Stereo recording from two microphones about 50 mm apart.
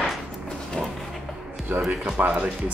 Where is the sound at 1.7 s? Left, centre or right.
Right.